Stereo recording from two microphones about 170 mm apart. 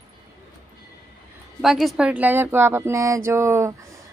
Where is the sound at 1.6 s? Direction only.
Centre (ahead or behind).